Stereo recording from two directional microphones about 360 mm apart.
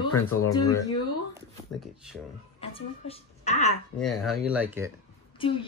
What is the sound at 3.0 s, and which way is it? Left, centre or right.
Speech, centre.